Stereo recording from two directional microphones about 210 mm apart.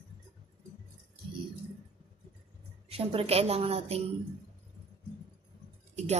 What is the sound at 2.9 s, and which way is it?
Speech, 25° right (ahead or behind).